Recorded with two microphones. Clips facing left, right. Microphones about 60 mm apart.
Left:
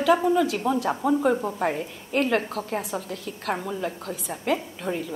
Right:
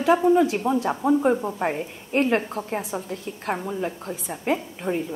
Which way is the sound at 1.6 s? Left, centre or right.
Centre.